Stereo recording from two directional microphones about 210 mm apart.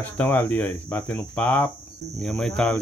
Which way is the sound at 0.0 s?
5° left (ahead or behind).